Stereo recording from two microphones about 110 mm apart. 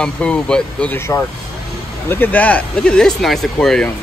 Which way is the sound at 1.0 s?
20° left (ahead or behind).